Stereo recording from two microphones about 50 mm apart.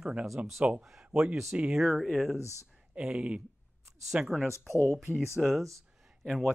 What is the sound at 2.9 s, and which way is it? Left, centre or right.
Speech, right.